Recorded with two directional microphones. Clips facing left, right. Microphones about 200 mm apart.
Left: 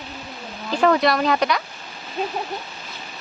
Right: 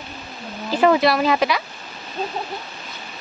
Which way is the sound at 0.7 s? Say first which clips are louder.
Right 2 dB; 5° right (ahead or behind).